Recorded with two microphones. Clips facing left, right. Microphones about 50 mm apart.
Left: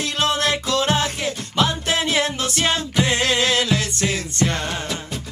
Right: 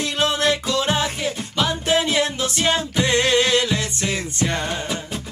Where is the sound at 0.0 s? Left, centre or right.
Right.